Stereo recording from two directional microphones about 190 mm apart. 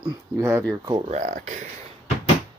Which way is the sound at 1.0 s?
40° right (ahead or behind).